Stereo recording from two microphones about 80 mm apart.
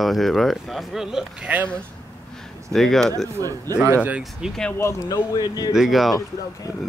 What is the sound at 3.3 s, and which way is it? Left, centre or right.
Speech, right.